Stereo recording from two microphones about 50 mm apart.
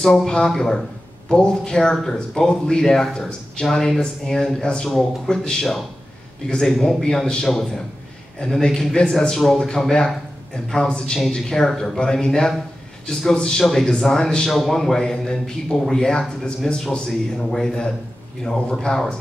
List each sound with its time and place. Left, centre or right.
0.0 s a man's voice: centre